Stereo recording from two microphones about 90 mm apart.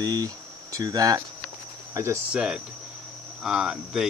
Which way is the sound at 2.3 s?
10° right (ahead or behind).